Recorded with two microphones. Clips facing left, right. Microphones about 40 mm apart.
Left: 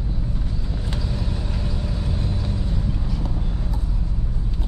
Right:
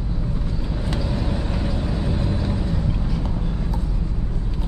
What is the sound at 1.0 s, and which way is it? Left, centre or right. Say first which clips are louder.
Vehicle: right 4 dB; right.